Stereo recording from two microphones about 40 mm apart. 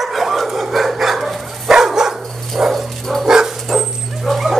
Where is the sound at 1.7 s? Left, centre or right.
Centre.